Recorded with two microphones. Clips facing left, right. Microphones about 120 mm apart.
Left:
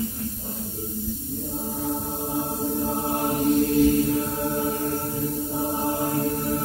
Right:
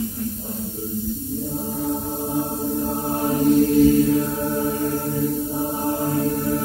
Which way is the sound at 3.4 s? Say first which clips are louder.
Right 5 dB; 50° right (ahead or behind).